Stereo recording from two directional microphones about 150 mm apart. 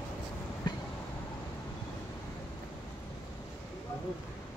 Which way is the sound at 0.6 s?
30° left (ahead or behind).